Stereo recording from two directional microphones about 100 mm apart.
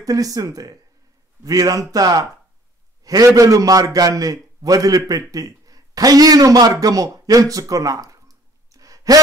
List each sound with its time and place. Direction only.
0.0 s a man's voice: 35° right (ahead or behind)
8.7 s sigh: 35° right (ahead or behind)